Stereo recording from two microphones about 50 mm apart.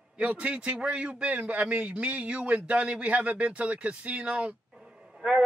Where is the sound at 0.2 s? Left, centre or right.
Right.